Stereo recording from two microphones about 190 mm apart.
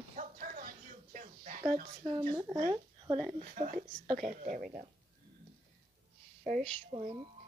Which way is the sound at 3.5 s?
40° right (ahead or behind).